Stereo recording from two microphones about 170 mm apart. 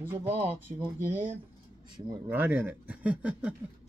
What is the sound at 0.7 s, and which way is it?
Speech, 40° right (ahead or behind).